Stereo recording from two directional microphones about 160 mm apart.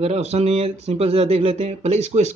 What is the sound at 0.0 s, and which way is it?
Speech, 40° right (ahead or behind).